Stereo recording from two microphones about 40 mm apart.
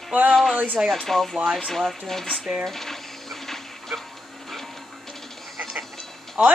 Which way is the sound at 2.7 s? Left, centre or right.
Centre.